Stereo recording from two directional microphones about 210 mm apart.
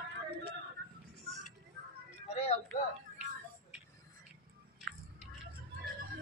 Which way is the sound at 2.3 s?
30° left (ahead or behind).